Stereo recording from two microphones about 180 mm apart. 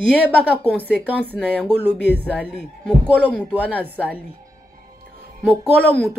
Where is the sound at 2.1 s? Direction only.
10° left (ahead or behind).